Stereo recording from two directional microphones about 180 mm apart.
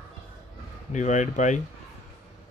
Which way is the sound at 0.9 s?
45° left (ahead or behind).